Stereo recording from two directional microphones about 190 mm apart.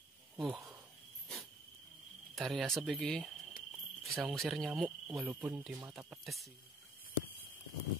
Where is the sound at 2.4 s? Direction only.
Centre (ahead or behind).